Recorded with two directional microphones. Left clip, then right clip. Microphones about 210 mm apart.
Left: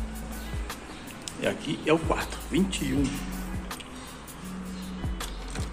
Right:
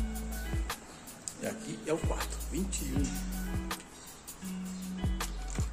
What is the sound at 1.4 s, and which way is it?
Speech, centre (ahead or behind).